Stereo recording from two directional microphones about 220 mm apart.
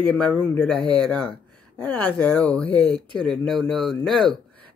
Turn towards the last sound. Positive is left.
turn(degrees=0)  # may be behind; listen again after turning